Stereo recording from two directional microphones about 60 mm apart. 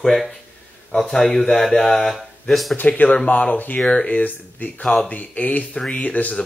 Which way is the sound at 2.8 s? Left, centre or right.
Left.